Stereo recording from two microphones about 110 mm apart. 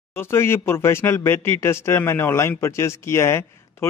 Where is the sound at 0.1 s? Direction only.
20° left (ahead or behind).